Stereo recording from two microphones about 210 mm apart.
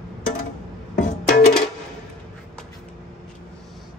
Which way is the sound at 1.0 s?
40° left (ahead or behind).